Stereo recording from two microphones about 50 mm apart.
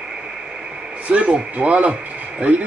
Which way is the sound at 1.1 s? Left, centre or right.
Right.